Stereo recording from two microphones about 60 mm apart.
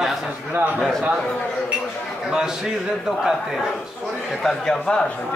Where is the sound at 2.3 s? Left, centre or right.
Centre.